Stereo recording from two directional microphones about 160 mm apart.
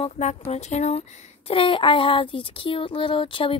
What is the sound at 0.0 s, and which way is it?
A woman's voice, 40° left (ahead or behind).